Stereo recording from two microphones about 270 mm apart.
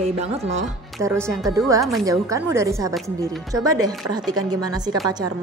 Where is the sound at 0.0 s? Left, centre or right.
Right.